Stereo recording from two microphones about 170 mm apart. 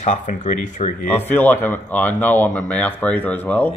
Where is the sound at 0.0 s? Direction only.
45° left (ahead or behind).